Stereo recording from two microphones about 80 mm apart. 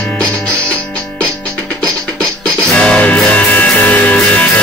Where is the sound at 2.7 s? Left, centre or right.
Centre.